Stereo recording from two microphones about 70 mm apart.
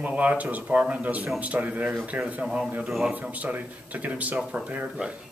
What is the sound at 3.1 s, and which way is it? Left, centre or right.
Speech, right.